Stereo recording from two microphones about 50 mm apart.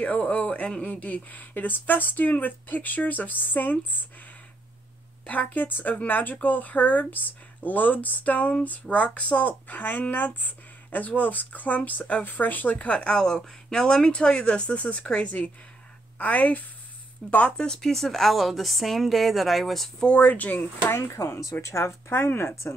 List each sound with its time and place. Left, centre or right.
0.0 s speech: left
5.2 s speech: left
9.7 s speech: left
12.7 s speech: left
13.1 s speech: centre; by 16.6 s left
17.2 s a woman's voice: centre
20.1 s speech: left
20.9 s speech: left
22.1 s speech: left